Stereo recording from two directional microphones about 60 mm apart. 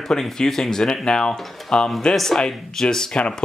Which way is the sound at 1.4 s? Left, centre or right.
Centre.